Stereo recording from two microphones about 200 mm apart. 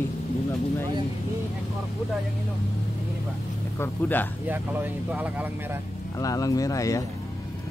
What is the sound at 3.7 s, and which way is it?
Speech, 10° left (ahead or behind).